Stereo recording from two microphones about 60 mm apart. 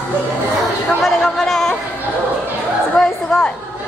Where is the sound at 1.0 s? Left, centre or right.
Centre.